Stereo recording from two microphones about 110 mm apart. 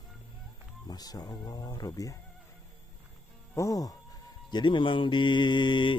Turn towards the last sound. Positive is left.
turn(degrees=45)  # may be behind; listen again after turning